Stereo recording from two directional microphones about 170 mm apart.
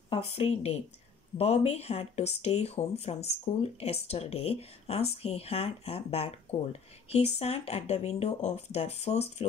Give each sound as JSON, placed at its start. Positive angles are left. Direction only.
{"t": 0.1, "sound": "speech", "side_deg": 35}